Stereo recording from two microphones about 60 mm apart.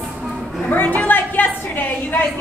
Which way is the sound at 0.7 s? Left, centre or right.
Left.